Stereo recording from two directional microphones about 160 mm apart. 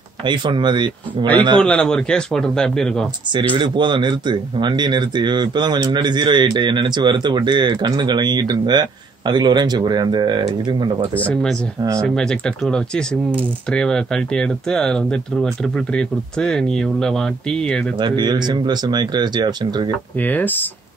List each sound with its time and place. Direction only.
0.2 s speech: 30° right (ahead or behind)
1.6 s speech: 5° left (ahead or behind)
3.3 s speech: 30° right (ahead or behind)
11.1 s speech: 10° left (ahead or behind)
17.9 s speech: 30° right (ahead or behind)
20.2 s speech: 10° left (ahead or behind)